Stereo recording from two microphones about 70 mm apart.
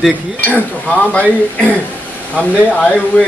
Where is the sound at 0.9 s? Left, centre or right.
Centre.